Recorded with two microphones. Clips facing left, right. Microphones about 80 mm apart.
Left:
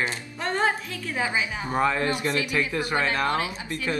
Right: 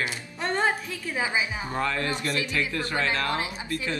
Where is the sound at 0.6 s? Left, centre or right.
Centre.